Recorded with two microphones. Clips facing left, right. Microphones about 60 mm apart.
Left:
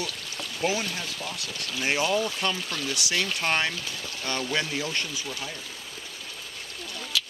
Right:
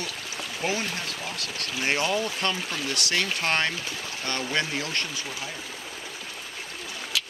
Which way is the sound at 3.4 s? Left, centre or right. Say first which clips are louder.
Left 1 dB; centre.